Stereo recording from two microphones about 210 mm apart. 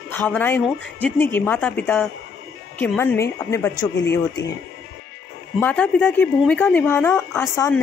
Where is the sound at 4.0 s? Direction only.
60° left (ahead or behind).